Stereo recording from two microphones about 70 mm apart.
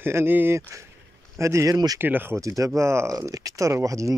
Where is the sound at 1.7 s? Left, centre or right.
Right.